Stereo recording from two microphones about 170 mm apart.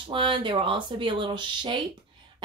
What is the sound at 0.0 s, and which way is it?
Speech, 30° right (ahead or behind).